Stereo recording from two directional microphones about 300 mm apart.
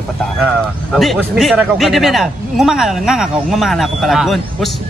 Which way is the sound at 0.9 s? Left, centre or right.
Centre.